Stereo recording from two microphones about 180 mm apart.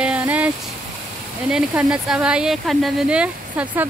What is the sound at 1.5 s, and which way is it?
Speech, 5° right (ahead or behind).